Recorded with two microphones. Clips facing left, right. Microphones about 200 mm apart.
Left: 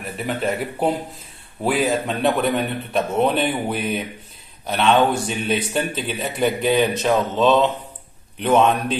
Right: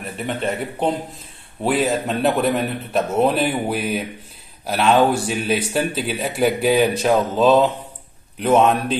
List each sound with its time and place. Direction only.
0.0 s a man's voice: centre (ahead or behind)